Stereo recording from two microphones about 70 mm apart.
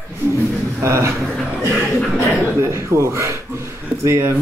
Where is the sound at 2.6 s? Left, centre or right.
Right.